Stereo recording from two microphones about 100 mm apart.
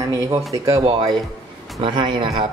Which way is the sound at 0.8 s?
50° right (ahead or behind).